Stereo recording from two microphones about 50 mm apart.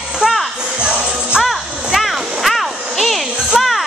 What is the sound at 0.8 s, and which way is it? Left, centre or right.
Music, right.